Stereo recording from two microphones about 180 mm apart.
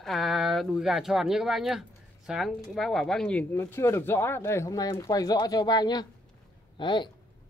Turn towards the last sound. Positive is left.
turn(degrees=25)  # may be behind; listen again after turning